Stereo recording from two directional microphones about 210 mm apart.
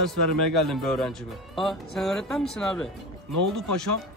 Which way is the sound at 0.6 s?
Centre (ahead or behind).